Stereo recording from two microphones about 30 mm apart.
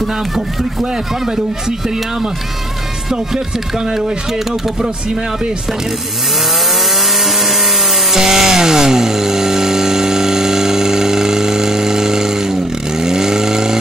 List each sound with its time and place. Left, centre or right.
3.1 s speech: centre
7.2 s wood: centre
13.0 s vehicle: centre